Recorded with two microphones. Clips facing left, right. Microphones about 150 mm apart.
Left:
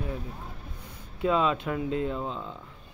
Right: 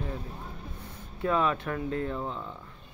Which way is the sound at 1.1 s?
15° left (ahead or behind).